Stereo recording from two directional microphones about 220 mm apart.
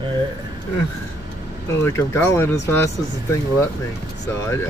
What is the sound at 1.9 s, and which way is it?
Speech, 10° left (ahead or behind).